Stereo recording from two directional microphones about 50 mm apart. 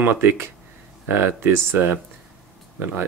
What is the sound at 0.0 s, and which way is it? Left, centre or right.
Speech, right.